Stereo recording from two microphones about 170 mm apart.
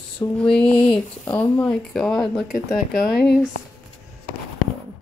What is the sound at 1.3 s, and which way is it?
Speech, 10° left (ahead or behind).